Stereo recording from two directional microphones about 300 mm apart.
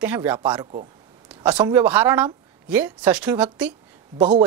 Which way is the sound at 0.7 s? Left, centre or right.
Centre.